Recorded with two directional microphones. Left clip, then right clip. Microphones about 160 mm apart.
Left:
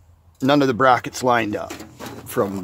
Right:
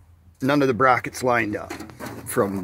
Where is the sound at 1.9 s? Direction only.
Centre (ahead or behind).